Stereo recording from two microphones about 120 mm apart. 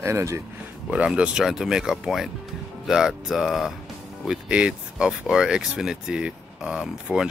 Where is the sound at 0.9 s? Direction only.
10° right (ahead or behind).